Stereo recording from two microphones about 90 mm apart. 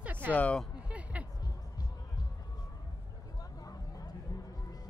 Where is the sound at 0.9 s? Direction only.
15° right (ahead or behind).